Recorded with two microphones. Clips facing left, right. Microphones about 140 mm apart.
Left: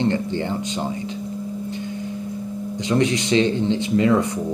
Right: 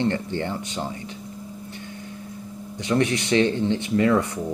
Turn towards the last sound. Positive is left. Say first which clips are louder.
# left 2 dB
turn(degrees=20)  # may be behind; listen again after turning